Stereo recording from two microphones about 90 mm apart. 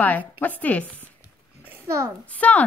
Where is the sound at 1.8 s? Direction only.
30° right (ahead or behind).